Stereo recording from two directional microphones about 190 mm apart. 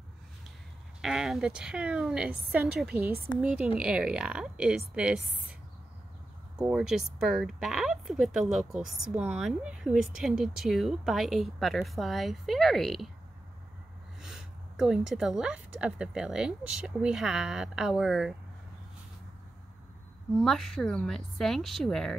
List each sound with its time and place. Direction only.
1.0 s a woman's voice: 5° right (ahead or behind)
6.6 s a woman's voice: 5° right (ahead or behind)
14.2 s a woman's voice: 5° right (ahead or behind)
20.3 s a woman's voice: centre (ahead or behind)